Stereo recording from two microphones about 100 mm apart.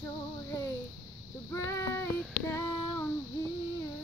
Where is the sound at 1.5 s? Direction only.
30° left (ahead or behind).